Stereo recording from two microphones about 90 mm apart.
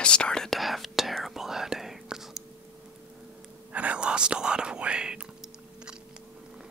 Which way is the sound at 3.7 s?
15° right (ahead or behind).